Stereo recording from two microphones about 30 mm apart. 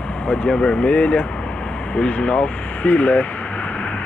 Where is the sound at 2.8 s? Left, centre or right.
Left.